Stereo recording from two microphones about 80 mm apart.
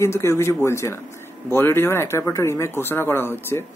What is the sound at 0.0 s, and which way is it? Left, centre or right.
A man's voice, left.